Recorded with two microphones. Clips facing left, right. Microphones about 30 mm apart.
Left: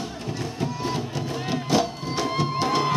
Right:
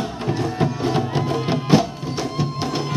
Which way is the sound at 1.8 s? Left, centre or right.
Centre.